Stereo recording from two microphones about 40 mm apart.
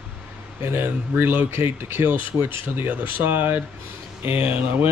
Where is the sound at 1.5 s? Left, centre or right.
Right.